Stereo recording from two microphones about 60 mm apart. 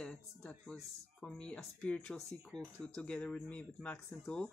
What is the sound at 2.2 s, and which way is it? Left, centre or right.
Speech, centre.